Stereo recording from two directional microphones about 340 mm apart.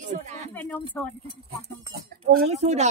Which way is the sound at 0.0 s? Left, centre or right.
Right.